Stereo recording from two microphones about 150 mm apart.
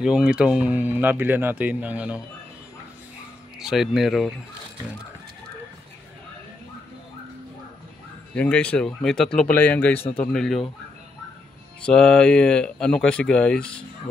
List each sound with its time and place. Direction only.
0.0 s speech: 5° right (ahead or behind)
3.5 s speech: 5° right (ahead or behind)
8.4 s speech: 10° left (ahead or behind)
11.8 s speech: 5° left (ahead or behind)